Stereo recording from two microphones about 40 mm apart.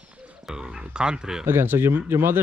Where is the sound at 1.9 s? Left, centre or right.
Right.